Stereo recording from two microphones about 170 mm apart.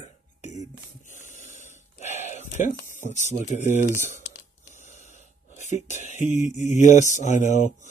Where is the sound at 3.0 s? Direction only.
45° left (ahead or behind).